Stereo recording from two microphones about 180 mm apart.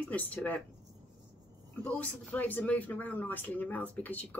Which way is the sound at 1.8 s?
10° left (ahead or behind).